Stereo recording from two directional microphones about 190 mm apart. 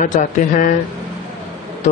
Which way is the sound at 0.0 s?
40° left (ahead or behind).